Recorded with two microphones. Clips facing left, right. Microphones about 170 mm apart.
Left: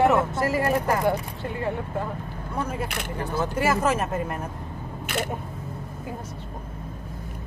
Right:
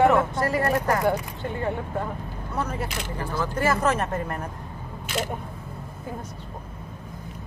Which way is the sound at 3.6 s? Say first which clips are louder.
Even; 10° left (ahead or behind).